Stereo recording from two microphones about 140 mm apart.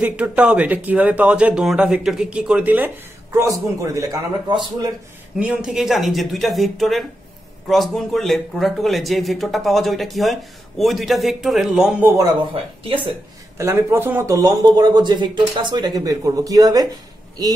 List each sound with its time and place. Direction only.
0.0 s speech: 10° right (ahead or behind)
3.3 s speech: 25° right (ahead or behind)
5.4 s speech: 5° right (ahead or behind)
12.0 s speech: 15° right (ahead or behind)
12.8 s speech: 35° right (ahead or behind)
13.6 s speech: 20° right (ahead or behind)